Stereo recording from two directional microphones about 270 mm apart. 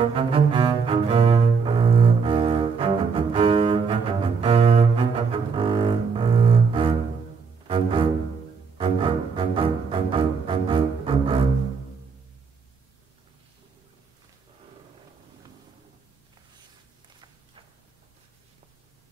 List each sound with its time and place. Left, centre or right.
0.0 s cello: centre